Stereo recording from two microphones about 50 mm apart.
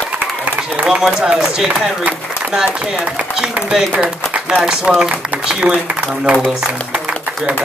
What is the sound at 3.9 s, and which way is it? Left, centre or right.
Speech, right.